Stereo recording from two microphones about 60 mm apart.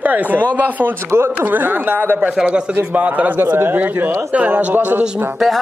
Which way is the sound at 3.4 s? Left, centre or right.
Right.